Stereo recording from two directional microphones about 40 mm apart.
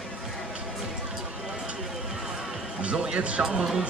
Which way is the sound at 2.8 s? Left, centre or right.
Right.